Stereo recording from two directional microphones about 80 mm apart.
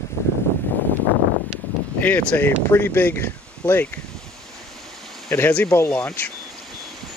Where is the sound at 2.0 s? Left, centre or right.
Left.